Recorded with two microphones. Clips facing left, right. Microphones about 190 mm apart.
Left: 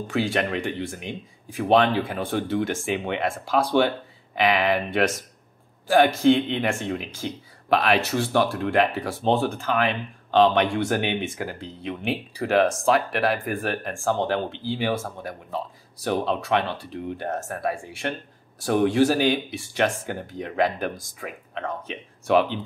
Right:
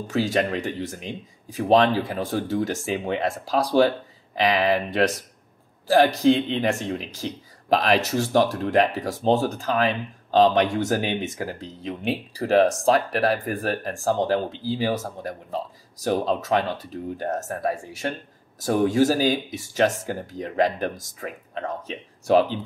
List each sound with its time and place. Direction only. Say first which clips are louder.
0.0 s speech: right 2 dB; 40° right (ahead or behind)